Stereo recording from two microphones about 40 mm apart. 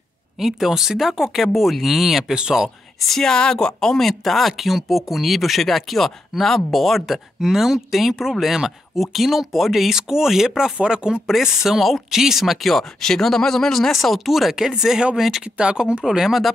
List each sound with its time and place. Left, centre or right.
0.4 s speech: centre
2.3 s speech: right
3.1 s speech: centre; by 11.1 s right
11.2 s speech: centre
13.0 s speech: centre
14.5 s speech: centre
15.5 s speech: right; by 16.5 s centre